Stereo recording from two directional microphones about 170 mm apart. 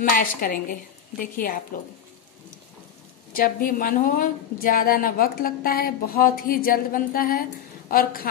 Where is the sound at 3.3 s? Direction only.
55° left (ahead or behind).